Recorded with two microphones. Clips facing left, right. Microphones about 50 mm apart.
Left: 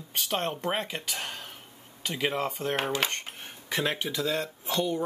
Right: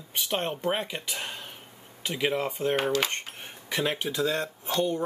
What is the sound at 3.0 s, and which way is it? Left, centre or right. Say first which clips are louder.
Dishes: right 1 dB; right.